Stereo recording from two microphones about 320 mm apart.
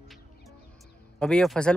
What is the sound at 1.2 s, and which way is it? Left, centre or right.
Speech, centre.